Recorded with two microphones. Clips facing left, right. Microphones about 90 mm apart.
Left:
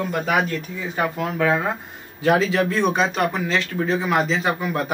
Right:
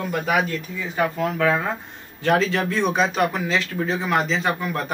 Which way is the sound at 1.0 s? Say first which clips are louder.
Right 1 dB; 15° left (ahead or behind).